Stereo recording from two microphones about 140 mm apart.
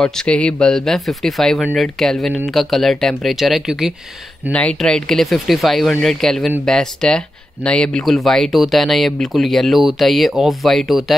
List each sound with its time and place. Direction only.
0.0 s speech: 5° left (ahead or behind)
4.5 s speech: 10° left (ahead or behind)